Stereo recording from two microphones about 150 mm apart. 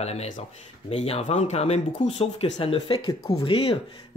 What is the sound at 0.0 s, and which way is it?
Speech, 45° left (ahead or behind).